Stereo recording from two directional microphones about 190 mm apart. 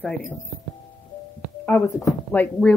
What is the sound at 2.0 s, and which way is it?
Speech, 10° left (ahead or behind).